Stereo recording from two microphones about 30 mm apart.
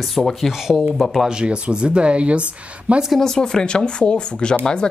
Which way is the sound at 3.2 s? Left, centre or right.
Centre.